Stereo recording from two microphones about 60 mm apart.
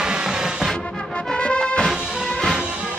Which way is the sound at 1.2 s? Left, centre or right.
Centre.